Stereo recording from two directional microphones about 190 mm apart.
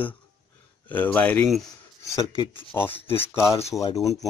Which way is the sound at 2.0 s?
20° left (ahead or behind).